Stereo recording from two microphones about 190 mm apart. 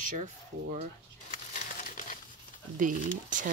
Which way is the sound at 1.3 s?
40° left (ahead or behind).